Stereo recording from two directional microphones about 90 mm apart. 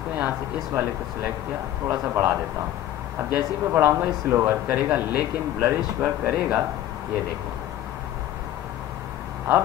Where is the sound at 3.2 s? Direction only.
25° right (ahead or behind).